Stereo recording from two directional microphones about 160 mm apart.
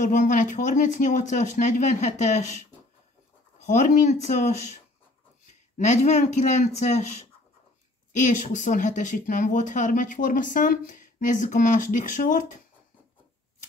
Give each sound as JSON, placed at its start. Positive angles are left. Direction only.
{"t": 0.0, "sound": "speech", "side_deg": 50}
{"t": 3.6, "sound": "speech", "side_deg": 50}
{"t": 5.5, "sound": "speech", "side_deg": 45}
{"t": 8.2, "sound": "speech", "side_deg": 50}